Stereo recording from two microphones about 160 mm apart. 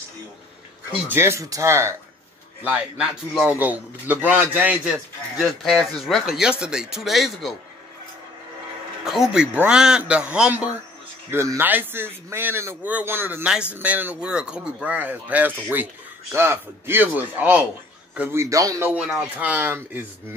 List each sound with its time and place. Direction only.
1.0 s a man's voice: 15° right (ahead or behind)
9.0 s a man's voice: centre (ahead or behind); by 18.9 s 20° right (ahead or behind)
18.9 s a man's voice: 5° right (ahead or behind)